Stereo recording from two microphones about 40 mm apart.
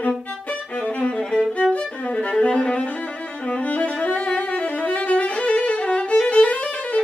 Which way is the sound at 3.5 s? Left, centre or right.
Left.